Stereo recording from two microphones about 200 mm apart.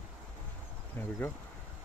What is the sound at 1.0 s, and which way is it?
Insect, 10° left (ahead or behind).